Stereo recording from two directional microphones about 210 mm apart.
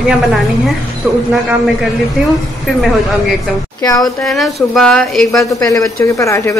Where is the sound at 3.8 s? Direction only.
20° left (ahead or behind).